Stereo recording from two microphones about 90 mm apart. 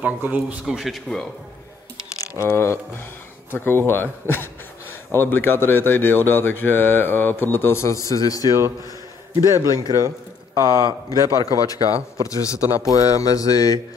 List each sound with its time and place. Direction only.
0.0 s speech: 20° right (ahead or behind)
0.7 s a man's voice: centre (ahead or behind)
2.1 s speech: 30° left (ahead or behind)
9.4 s a man's voice: 30° right (ahead or behind)
11.4 s speech: 40° left (ahead or behind)
12.9 s mantra: 40° left (ahead or behind)